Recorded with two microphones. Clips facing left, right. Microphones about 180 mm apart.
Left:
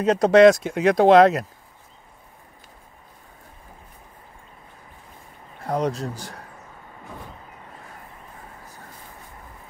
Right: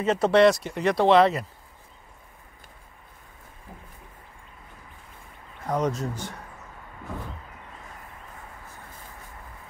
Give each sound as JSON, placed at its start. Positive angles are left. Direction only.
{"t": 0.0, "sound": "speech", "side_deg": 40}
{"t": 0.5, "sound": "speech", "side_deg": 90}
{"t": 0.9, "sound": "speech", "side_deg": 45}
{"t": 5.7, "sound": "speech", "side_deg": 35}